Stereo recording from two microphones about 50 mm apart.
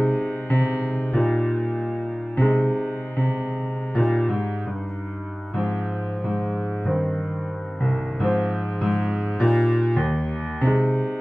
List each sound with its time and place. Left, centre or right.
0.0 s music: left
1.1 s keyboard: centre
2.3 s music: left
2.6 s music: left
3.9 s keyboard: centre
6.9 s music: centre
8.8 s music: centre
9.4 s music: centre
10.6 s music: left